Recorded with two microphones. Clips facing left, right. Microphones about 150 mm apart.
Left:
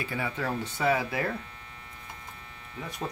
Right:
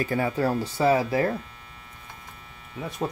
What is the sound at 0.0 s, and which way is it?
Speech, 40° right (ahead or behind).